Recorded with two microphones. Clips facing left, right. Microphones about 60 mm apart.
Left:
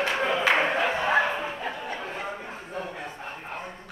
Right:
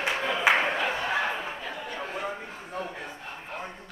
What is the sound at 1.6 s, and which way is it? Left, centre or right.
Chatter, left.